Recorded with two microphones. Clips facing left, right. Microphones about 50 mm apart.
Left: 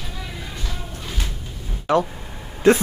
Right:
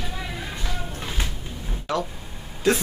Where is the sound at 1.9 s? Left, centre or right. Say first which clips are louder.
Left 8 dB; left.